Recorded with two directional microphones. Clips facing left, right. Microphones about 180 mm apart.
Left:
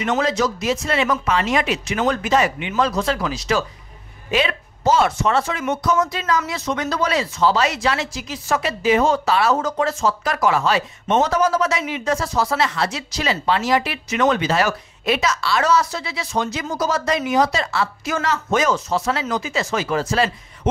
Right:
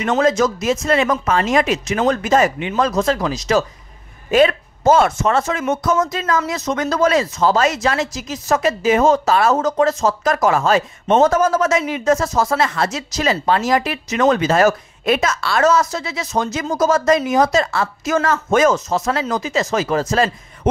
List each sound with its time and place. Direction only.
0.2 s speech: 45° right (ahead or behind)